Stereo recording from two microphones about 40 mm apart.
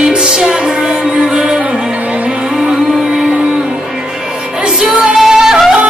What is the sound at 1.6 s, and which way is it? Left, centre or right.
Music, right.